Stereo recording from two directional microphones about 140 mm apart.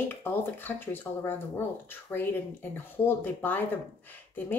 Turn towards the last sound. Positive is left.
turn(degrees=15)  # may be behind; listen again after turning